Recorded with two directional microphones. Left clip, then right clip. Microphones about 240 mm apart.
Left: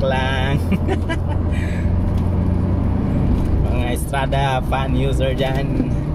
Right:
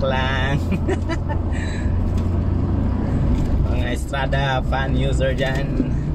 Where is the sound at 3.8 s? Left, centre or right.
Centre.